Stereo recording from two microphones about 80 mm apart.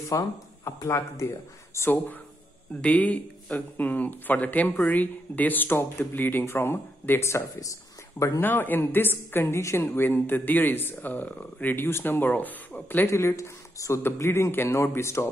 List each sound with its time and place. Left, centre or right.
0.1 s speech: left
1.8 s a woman's voice: left
8.4 s a woman's voice: left